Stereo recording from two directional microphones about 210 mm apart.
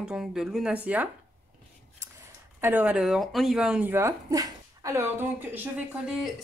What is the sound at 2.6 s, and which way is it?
Speech, 10° right (ahead or behind).